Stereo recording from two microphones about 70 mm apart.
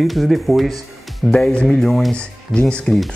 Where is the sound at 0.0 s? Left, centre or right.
Centre.